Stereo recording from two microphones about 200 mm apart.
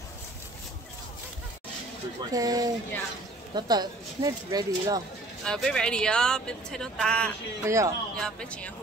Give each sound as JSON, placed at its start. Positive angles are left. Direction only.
{"t": 2.3, "sound": "speech", "side_deg": -20}
{"t": 5.4, "sound": "a woman's voice", "side_deg": 5}
{"t": 7.6, "sound": "speech", "side_deg": -15}
{"t": 8.2, "sound": "a woman's voice", "side_deg": 5}